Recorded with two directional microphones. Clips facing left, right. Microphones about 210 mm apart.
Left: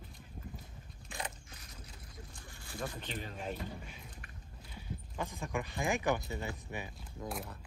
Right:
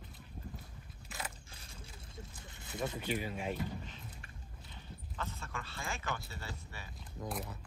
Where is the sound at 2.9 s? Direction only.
10° right (ahead or behind).